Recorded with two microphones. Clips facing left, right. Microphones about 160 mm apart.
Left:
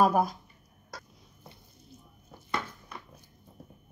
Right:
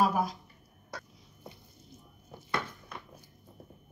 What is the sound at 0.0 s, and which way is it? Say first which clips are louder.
Speech: left 4 dB; 50° left (ahead or behind).